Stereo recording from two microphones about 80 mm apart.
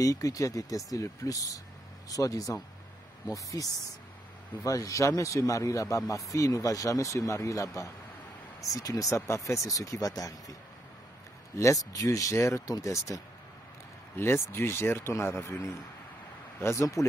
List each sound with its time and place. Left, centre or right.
0.0 s a man's voice: left
4.6 s a man's voice: left
11.5 s a man's voice: left
14.1 s speech: left